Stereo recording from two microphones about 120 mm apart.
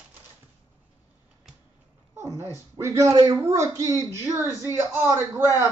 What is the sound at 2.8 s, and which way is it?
Speech, 25° right (ahead or behind).